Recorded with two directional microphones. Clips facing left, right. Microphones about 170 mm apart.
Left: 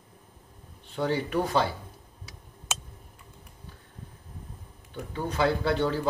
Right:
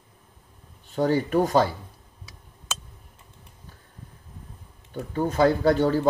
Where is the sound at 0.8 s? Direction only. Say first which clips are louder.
Right 5 dB; 45° right (ahead or behind).